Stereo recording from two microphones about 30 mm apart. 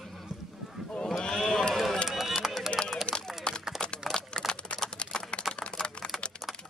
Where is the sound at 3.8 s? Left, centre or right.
Left.